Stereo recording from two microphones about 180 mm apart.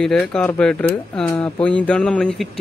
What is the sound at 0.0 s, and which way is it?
Speech, 5° left (ahead or behind).